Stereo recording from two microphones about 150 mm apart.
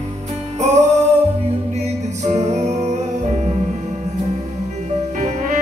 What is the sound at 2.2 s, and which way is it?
Music, 50° right (ahead or behind).